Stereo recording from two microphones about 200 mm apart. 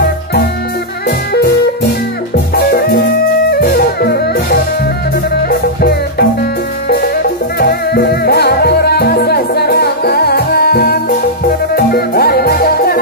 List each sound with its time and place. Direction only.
1.0 s music: 50° left (ahead or behind)
3.4 s music: 50° left (ahead or behind)
7.5 s music: 50° left (ahead or behind)